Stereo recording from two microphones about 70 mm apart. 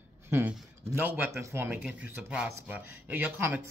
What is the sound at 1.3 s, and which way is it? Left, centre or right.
Speech, right.